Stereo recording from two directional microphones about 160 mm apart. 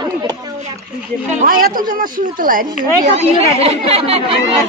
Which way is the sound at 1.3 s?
60° right (ahead or behind).